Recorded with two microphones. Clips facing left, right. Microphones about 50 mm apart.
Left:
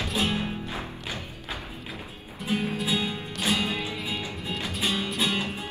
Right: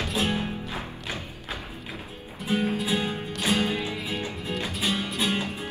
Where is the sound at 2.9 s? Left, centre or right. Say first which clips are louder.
Right 1 dB; right.